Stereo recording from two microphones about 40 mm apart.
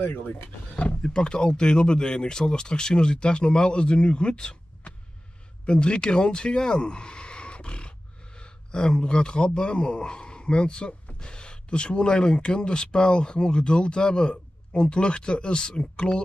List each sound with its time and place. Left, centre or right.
1.0 s speech: centre